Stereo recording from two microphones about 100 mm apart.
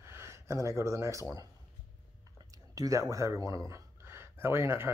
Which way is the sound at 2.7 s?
35° right (ahead or behind).